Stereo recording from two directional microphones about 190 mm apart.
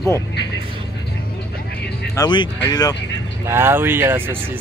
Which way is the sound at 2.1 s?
25° left (ahead or behind).